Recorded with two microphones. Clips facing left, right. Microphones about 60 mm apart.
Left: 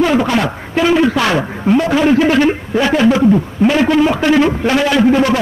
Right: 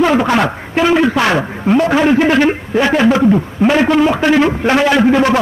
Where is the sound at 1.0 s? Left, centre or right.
Right.